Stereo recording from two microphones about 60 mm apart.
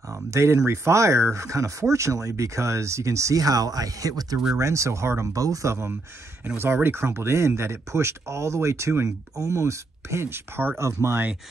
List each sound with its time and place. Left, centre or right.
0.3 s speech: right
4.6 s speech: right
5.3 s speech: right
6.4 s speech: right
10.8 s speech: right